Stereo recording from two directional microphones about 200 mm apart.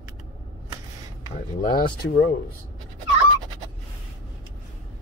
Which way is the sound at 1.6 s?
45° left (ahead or behind).